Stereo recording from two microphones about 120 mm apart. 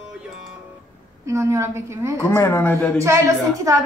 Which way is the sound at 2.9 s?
25° right (ahead or behind).